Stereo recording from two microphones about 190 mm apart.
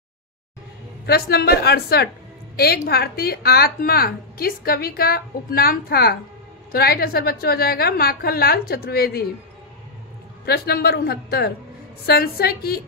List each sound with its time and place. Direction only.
1.0 s a woman's voice: 55° left (ahead or behind)
10.4 s a woman's voice: 55° left (ahead or behind)